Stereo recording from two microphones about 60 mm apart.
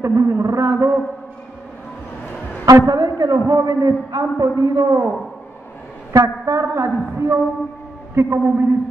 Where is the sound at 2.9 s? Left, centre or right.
Right.